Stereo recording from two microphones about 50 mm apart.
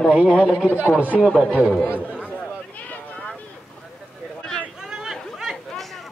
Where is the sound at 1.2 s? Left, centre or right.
Centre.